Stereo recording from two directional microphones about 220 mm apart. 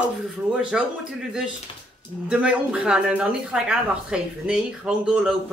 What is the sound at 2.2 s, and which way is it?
Speech, 5° right (ahead or behind).